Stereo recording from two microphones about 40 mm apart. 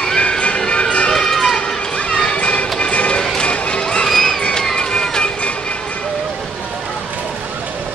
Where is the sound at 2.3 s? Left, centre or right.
Left.